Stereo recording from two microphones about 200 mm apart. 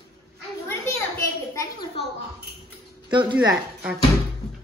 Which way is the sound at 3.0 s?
25° right (ahead or behind).